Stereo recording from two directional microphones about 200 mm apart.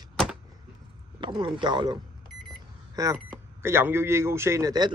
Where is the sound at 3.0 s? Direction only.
20° right (ahead or behind).